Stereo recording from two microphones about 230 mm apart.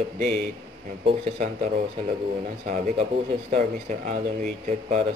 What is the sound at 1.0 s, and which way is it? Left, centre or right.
Speech, right.